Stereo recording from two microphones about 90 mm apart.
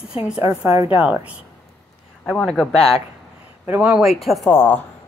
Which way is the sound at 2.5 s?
5° left (ahead or behind).